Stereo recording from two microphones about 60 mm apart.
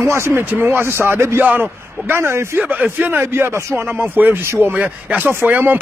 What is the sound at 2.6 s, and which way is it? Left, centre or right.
Speech, right.